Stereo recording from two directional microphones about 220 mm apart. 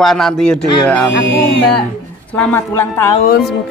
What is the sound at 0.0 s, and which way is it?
Speech, centre (ahead or behind).